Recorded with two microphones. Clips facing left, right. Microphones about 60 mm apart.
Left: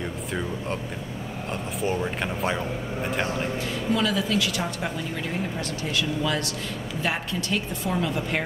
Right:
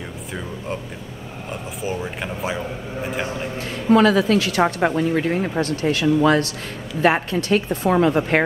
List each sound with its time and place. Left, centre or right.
1.8 s a man's voice: centre
3.9 s speech: right